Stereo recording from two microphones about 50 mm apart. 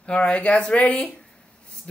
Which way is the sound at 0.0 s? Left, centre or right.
Left.